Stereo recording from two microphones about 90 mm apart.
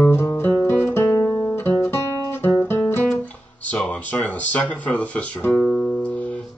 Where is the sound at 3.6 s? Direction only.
15° left (ahead or behind).